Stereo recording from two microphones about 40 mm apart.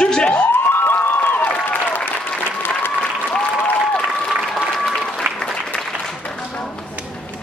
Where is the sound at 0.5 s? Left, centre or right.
Left.